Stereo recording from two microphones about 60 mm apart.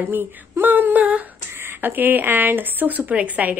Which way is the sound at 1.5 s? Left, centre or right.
Right.